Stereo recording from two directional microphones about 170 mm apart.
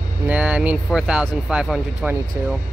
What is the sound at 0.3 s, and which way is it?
Speech, 10° right (ahead or behind).